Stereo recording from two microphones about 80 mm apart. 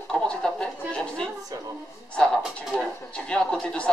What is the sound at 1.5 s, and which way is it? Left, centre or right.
Music, right.